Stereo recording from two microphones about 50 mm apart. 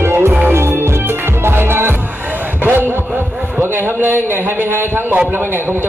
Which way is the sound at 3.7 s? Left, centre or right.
Right.